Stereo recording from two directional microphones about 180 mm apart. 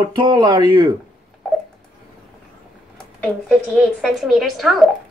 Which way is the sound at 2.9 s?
5° left (ahead or behind).